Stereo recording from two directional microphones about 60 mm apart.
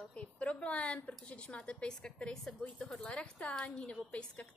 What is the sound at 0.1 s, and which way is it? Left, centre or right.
A woman's voice, left.